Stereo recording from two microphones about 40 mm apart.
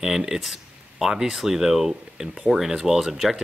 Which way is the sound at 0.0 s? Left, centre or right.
Centre.